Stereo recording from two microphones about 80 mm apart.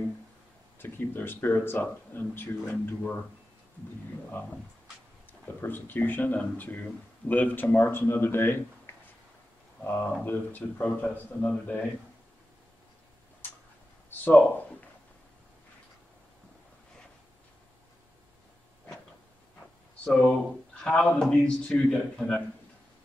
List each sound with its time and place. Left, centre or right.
0.7 s speech: left
5.6 s speech: left
14.2 s speech: left
20.1 s a man's voice: centre